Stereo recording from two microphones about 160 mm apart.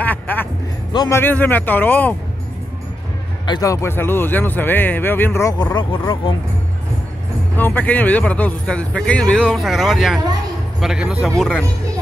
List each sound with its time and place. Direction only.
0.0 s music: 10° left (ahead or behind)
0.9 s speech: 20° left (ahead or behind)
3.4 s speech: 25° left (ahead or behind)
7.5 s speech: 10° left (ahead or behind)